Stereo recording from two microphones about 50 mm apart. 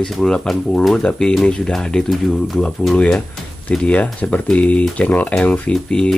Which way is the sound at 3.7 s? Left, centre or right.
Left.